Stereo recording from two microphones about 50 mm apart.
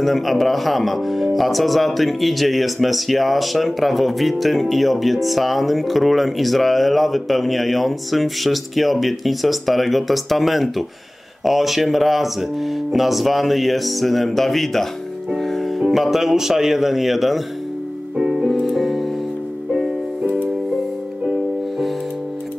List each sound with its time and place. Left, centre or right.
0.0 s speech: centre
15.3 s music: centre
15.8 s speech: centre
18.1 s music: centre
18.5 s music: centre